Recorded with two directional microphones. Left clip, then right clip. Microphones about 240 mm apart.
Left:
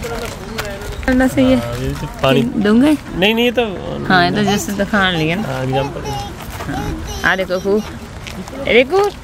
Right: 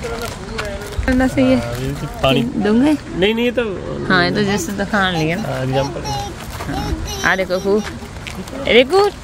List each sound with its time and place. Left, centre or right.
1.0 s a woman's voice: centre
3.2 s speech: left
4.1 s a woman's voice: centre
8.6 s speech: centre